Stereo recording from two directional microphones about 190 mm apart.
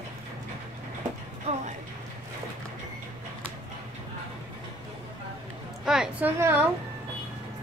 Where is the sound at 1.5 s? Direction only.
35° right (ahead or behind).